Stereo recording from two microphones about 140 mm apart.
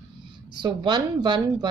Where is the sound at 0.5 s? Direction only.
30° right (ahead or behind).